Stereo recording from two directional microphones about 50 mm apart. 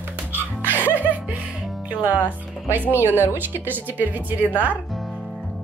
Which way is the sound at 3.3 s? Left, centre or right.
Right.